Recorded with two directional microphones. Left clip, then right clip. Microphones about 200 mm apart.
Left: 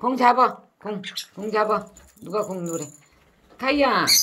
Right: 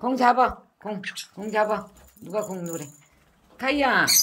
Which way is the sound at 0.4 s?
10° right (ahead or behind).